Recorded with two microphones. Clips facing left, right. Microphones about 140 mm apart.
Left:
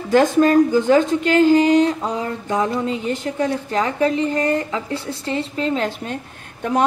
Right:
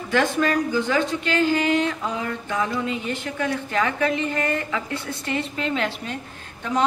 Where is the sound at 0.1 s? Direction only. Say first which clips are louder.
Left 7 dB; 40° left (ahead or behind).